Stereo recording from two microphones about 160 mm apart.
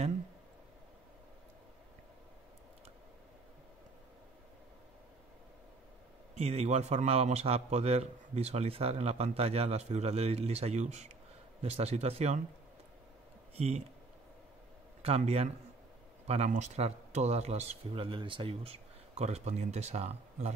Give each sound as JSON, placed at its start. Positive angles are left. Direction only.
{"t": 6.3, "sound": "a man's voice", "side_deg": -40}
{"t": 13.6, "sound": "a man's voice", "side_deg": -40}
{"t": 15.0, "sound": "a man's voice", "side_deg": -40}